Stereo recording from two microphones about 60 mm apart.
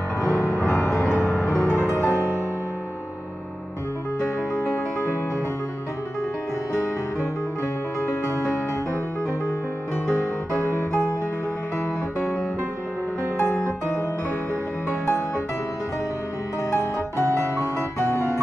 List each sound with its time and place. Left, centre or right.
0.3 s music: left
1.0 s music: left
1.3 s music: centre
1.7 s music: left
14.9 s music: left
17.4 s music: left